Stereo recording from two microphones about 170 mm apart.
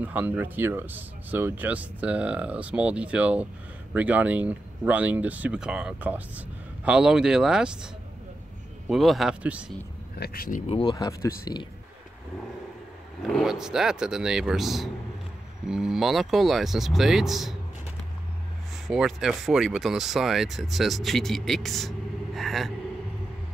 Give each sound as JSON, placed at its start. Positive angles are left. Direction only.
{"t": 0.0, "sound": "speech", "side_deg": -10}
{"t": 10.1, "sound": "speech", "side_deg": 65}
{"t": 10.7, "sound": "speech", "side_deg": 25}
{"t": 13.3, "sound": "speech", "side_deg": 0}
{"t": 18.9, "sound": "speech", "side_deg": 0}